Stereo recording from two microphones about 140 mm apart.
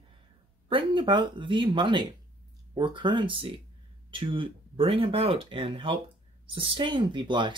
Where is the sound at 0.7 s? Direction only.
35° right (ahead or behind).